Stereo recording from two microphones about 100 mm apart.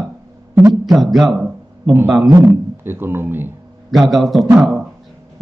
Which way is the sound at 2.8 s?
20° right (ahead or behind).